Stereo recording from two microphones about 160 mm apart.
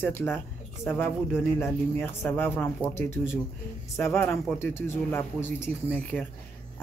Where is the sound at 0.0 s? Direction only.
15° left (ahead or behind).